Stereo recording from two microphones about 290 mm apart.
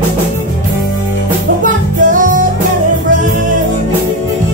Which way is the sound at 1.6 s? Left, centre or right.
Right.